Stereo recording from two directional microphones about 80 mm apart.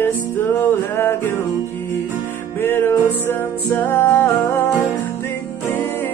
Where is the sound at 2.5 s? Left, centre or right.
Left.